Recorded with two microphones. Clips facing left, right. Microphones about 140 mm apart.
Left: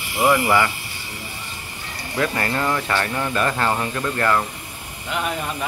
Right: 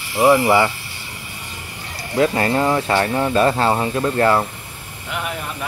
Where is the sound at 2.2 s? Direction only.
25° right (ahead or behind).